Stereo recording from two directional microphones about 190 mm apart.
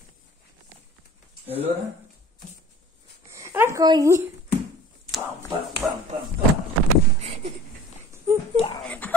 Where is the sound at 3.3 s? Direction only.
15° right (ahead or behind).